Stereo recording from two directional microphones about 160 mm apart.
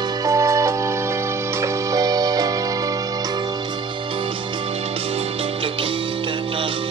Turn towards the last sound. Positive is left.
turn(degrees=-35)  # may be behind; listen again after turning